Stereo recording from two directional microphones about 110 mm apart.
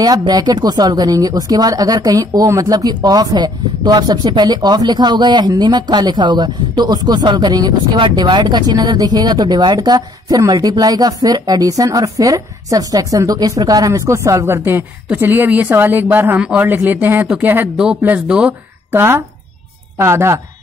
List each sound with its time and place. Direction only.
0.3 s speech: 35° right (ahead or behind)